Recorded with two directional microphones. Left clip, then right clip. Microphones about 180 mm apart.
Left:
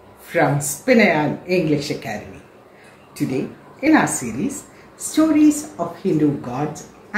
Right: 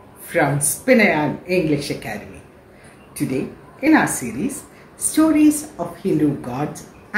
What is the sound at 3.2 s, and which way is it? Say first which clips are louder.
Speech: even; centre (ahead or behind).